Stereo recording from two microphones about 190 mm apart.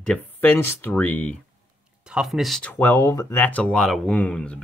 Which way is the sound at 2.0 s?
5° right (ahead or behind).